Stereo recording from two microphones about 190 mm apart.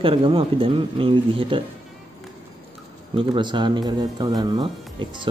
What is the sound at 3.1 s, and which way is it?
Speech, 25° right (ahead or behind).